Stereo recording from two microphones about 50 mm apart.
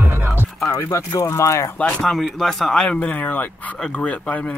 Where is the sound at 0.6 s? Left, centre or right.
Left.